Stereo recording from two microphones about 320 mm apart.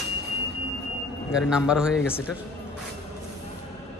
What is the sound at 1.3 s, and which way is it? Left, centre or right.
A man's voice, centre.